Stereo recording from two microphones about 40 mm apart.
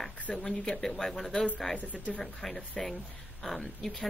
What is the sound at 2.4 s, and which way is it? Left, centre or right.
Speech, centre.